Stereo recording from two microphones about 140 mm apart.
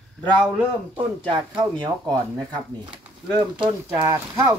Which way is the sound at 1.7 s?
30° right (ahead or behind).